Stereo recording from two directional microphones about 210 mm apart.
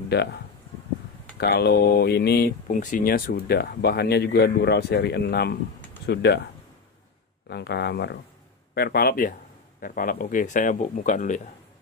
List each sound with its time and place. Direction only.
0.1 s speech: 50° left (ahead or behind)
1.4 s speech: 50° left (ahead or behind)
7.4 s speech: 55° left (ahead or behind); by 11.4 s 35° left (ahead or behind)